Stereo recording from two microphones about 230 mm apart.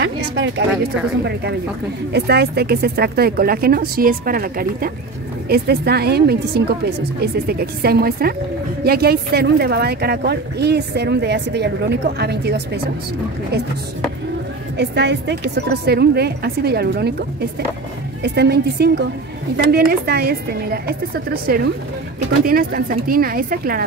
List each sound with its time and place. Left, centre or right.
1.2 s a woman's voice: right
14.8 s a woman's voice: right
18.2 s a woman's voice: right